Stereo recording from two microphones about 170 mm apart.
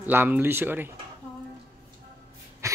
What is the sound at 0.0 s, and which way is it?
Speech, 10° right (ahead or behind).